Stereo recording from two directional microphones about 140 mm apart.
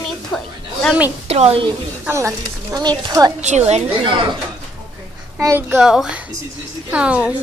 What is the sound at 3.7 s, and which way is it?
Speech, 40° right (ahead or behind).